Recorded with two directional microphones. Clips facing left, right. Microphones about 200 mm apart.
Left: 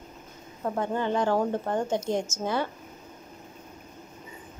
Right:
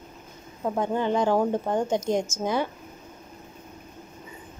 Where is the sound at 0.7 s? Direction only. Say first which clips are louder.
Right 3 dB; 15° right (ahead or behind).